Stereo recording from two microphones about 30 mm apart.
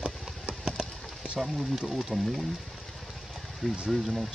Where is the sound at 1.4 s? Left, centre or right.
Centre.